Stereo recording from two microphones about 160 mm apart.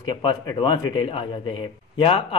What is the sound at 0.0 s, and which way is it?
Speech, 30° left (ahead or behind).